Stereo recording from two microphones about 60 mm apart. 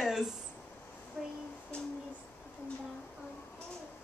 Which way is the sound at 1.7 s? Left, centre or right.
Centre.